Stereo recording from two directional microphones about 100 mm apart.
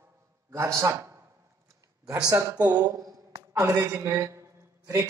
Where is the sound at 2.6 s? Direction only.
40° right (ahead or behind).